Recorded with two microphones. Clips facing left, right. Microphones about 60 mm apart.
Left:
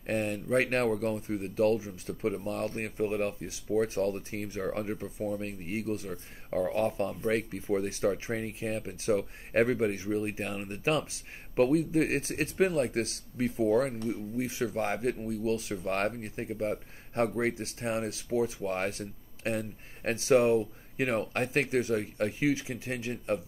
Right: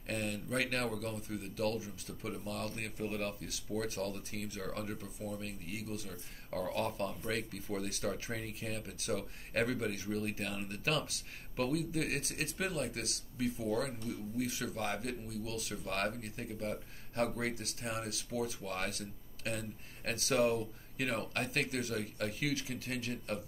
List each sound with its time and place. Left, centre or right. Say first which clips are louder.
0.0 s speech: left 7 dB; left